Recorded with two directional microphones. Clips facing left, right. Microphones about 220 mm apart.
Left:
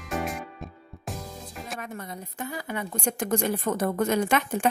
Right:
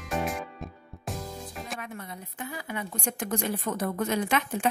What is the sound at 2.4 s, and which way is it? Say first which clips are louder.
Speech: left 3 dB; 45° left (ahead or behind).